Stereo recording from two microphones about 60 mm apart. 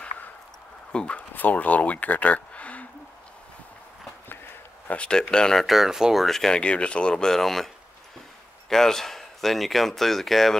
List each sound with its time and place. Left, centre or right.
0.9 s a sound: centre
1.3 s speech: left
4.8 s speech: centre
5.7 s speech: centre
6.2 s speech: centre